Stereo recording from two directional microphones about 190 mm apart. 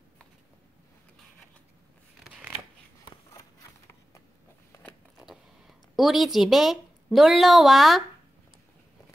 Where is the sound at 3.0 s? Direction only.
15° left (ahead or behind).